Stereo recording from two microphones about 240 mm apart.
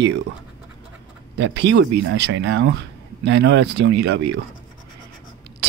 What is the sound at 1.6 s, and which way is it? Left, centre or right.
A man's voice, right.